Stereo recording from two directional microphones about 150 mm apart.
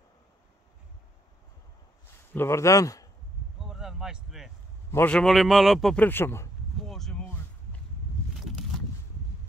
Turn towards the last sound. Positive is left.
turn(degrees=10)  # may be behind; listen again after turning